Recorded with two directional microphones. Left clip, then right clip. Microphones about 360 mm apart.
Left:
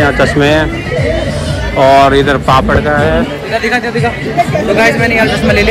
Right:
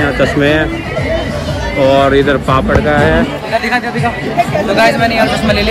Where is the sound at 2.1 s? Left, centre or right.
Centre.